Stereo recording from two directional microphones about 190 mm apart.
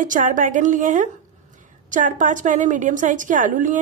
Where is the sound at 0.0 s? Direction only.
45° right (ahead or behind).